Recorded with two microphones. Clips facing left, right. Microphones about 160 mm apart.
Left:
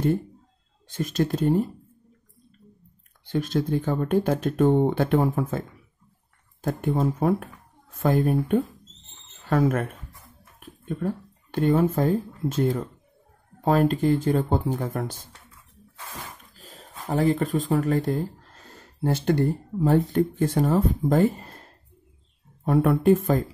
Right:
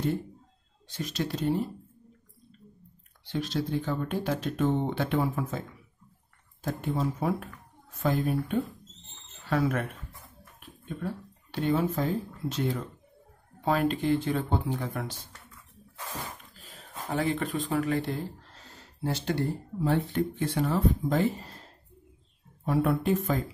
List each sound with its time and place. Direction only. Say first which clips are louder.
0.9 s speech: left 7 dB; 50° left (ahead or behind)
3.3 s speech: left 6 dB; 50° left (ahead or behind)
6.6 s speech: left 5 dB; 55° left (ahead or behind)
16.5 s speech: even; 40° left (ahead or behind)
22.7 s speech: left 7 dB; 50° left (ahead or behind)